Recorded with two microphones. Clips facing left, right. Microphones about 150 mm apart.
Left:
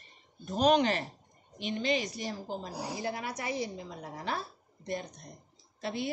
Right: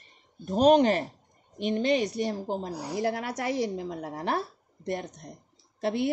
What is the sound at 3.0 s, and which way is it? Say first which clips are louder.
A woman's voice: right 10 dB; 75° right (ahead or behind).